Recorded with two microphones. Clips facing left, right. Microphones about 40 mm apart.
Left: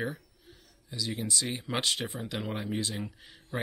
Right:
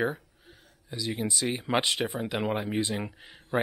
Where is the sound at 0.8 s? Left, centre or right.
Centre.